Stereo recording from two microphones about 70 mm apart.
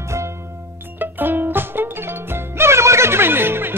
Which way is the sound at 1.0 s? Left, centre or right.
Right.